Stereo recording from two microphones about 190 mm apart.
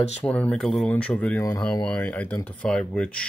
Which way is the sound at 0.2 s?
5° left (ahead or behind).